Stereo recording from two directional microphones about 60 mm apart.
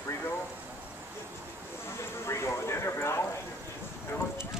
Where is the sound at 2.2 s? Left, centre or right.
Left.